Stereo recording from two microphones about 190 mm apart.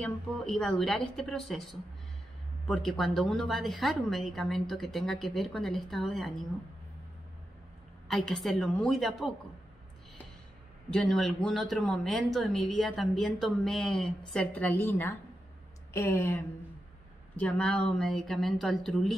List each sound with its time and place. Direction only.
0.0 s speech: 5° left (ahead or behind)
8.1 s speech: centre (ahead or behind)
10.9 s speech: centre (ahead or behind)
17.4 s speech: 5° left (ahead or behind)